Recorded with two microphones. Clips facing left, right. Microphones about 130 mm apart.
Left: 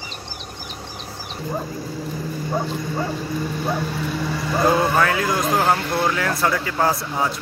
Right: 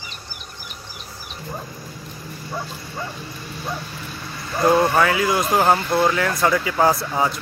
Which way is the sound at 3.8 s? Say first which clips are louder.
Left 9 dB; 90° left.